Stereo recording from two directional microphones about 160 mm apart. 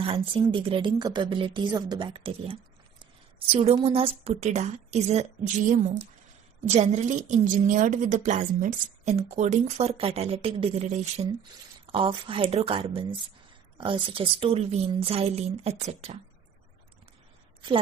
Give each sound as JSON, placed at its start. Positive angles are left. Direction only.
{"t": 0.0, "sound": "speech", "side_deg": -35}
{"t": 3.5, "sound": "a woman's voice", "side_deg": -35}
{"t": 11.8, "sound": "speech", "side_deg": -35}